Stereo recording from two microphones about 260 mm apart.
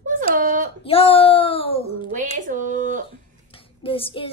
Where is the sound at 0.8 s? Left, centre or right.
Left.